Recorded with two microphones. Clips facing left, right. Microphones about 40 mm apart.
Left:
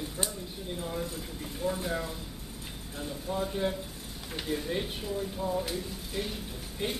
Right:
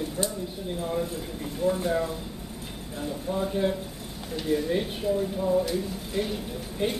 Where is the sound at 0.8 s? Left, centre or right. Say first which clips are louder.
Right 7 dB; centre.